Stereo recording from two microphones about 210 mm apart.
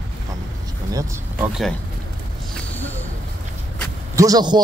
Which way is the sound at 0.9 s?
15° right (ahead or behind).